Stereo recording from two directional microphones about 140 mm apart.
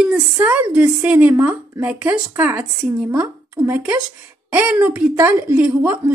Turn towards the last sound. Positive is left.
turn(degrees=-15)  # may be behind; listen again after turning